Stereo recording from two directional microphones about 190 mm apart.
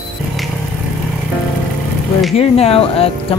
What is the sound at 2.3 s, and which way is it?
Speech, 30° left (ahead or behind).